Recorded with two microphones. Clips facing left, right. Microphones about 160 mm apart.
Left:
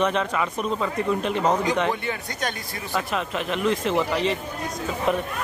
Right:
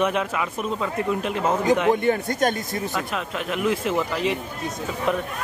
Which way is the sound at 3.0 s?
Centre (ahead or behind).